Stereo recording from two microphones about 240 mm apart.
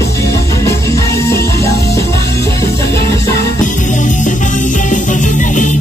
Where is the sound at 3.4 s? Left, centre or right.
Left.